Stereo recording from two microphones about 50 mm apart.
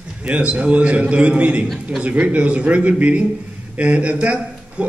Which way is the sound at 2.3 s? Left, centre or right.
Right.